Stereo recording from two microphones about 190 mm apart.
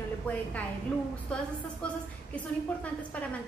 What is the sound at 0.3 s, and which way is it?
A woman's voice, 10° left (ahead or behind).